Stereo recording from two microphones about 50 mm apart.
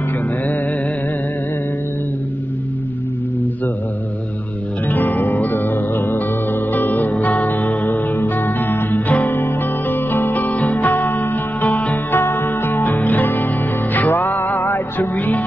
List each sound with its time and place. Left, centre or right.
4.8 s music: left